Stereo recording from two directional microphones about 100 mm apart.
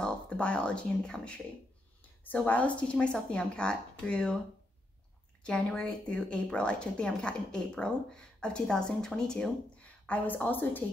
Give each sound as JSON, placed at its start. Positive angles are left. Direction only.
{"t": 0.0, "sound": "a woman's voice", "side_deg": 10}
{"t": 5.4, "sound": "a woman's voice", "side_deg": 10}